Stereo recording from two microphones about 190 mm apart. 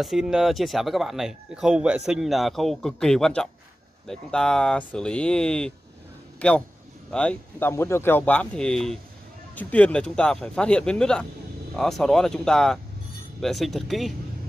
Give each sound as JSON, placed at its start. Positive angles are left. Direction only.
{"t": 0.0, "sound": "speech", "side_deg": 0}